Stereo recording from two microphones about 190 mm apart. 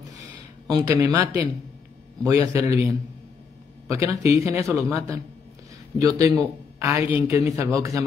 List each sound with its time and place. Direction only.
0.1 s a sound: 20° right (ahead or behind)
2.5 s a man's voice: 15° right (ahead or behind)
3.9 s a man's voice: 15° right (ahead or behind)